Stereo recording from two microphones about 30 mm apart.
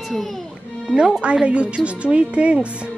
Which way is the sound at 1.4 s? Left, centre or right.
Right.